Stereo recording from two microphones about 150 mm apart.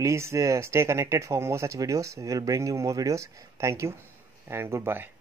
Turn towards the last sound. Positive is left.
turn(degrees=-15)  # may be behind; listen again after turning